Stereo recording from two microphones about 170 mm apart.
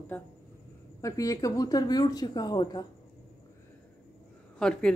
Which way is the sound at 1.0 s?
20° left (ahead or behind).